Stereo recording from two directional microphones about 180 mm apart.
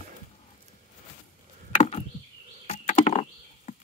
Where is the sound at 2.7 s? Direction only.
40° left (ahead or behind).